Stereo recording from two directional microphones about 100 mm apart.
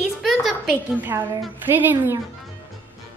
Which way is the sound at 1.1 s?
25° right (ahead or behind).